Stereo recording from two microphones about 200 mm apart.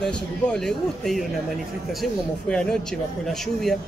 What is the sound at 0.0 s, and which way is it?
Speech, 5° left (ahead or behind).